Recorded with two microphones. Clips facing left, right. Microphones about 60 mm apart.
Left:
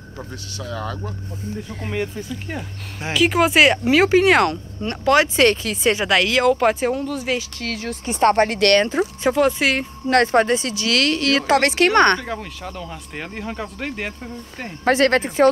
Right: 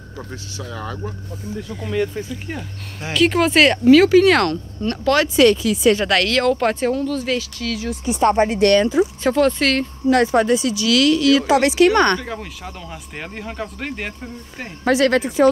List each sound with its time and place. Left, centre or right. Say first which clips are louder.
0.7 s speech: left 1 dB; centre
3.1 s speech: right 1 dB; centre
3.9 s speech: right 6 dB; left
5.3 s speech: right 3 dB; left
6.0 s speech: even; centre
7.5 s speech: right 2 dB; left
9.2 s speech: left 3 dB; centre
10.0 s speech: even; left
12.2 s speech: left 1 dB; centre
14.9 s speech: even; left